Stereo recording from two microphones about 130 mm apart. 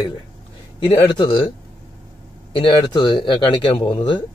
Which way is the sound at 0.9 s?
40° left (ahead or behind).